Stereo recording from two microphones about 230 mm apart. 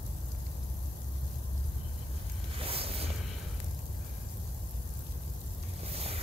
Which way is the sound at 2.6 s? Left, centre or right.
Right.